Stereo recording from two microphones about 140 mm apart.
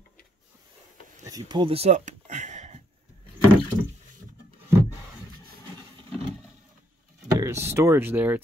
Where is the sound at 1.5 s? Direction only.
40° right (ahead or behind); by 2.8 s 55° right (ahead or behind).